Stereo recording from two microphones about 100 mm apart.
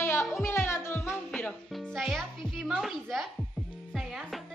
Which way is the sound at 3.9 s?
Centre (ahead or behind).